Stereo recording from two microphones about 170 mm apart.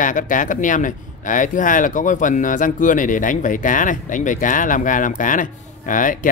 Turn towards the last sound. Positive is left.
turn(degrees=50)  # may be behind; listen again after turning